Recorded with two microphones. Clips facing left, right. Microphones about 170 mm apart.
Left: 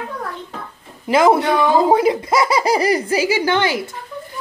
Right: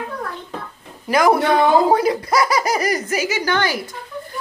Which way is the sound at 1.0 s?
25° left (ahead or behind).